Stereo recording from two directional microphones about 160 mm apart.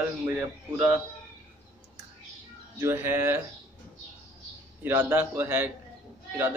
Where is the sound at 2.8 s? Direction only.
15° right (ahead or behind).